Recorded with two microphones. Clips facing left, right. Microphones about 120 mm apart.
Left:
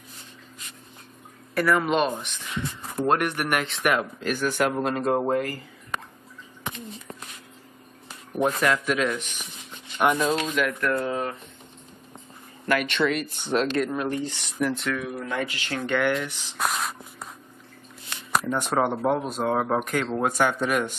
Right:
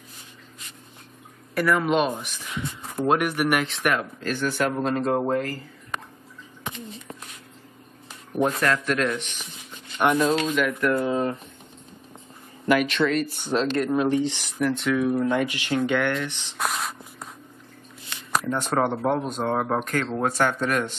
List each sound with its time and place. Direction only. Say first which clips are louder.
1.5 s speech: right 1 dB; centre (ahead or behind)
4.0 s speech: even; 15° left (ahead or behind)
8.3 s speech: even; centre (ahead or behind)
10.8 s speech: right 3 dB; 15° right (ahead or behind)
12.7 s speech: right 2 dB; centre (ahead or behind)
13.7 s speech: right 3 dB; 15° right (ahead or behind)
14.4 s speech: right 2 dB; centre (ahead or behind)
15.1 s speech: right 6 dB; 20° right (ahead or behind)
15.8 s speech: left 1 dB; centre (ahead or behind)
18.1 s shuffling cards: even; 5° left (ahead or behind)
19.0 s speech: even; 5° left (ahead or behind)